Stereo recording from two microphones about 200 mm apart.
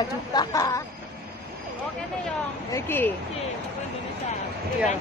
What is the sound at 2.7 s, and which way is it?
Speech, 10° left (ahead or behind).